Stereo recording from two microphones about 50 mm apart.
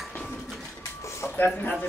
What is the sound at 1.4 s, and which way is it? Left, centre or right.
Speech, left.